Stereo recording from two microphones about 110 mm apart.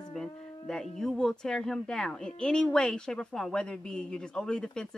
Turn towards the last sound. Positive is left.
turn(degrees=5)  # may be behind; listen again after turning